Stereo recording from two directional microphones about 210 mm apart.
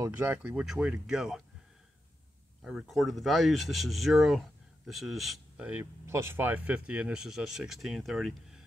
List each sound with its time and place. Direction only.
0.0 s speech: 10° right (ahead or behind)
2.6 s speech: centre (ahead or behind)